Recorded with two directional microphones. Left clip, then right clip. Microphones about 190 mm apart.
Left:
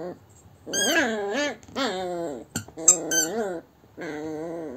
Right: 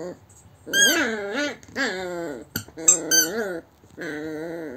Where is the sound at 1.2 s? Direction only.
30° left (ahead or behind).